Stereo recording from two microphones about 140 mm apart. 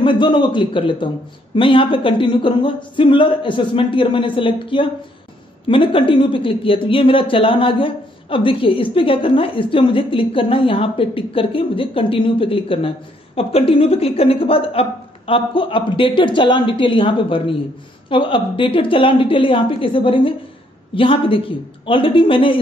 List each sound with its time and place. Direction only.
0.0 s a woman's voice: 35° left (ahead or behind)